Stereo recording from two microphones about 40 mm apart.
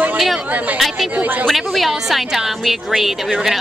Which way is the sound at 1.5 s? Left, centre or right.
Centre.